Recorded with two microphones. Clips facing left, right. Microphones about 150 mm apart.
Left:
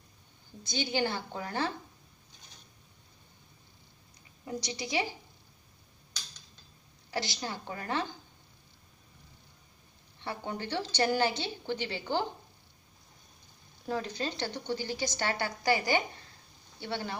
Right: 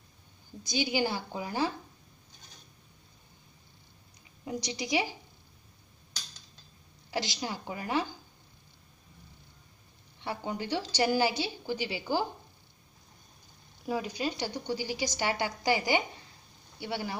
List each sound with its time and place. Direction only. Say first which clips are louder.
0.7 s a woman's voice: right 2 dB; 10° right (ahead or behind)
4.5 s a woman's voice: right 3 dB; 15° right (ahead or behind)
7.1 s a woman's voice: right 2 dB; 15° right (ahead or behind)
10.2 s a woman's voice: right 2 dB; 15° right (ahead or behind)
13.8 s a woman's voice: right 2 dB; 10° right (ahead or behind)